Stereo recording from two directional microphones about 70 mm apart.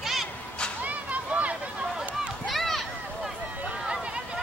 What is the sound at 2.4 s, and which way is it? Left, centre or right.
Run, centre.